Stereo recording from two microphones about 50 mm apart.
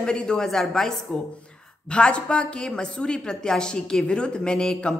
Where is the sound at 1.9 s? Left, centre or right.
Left.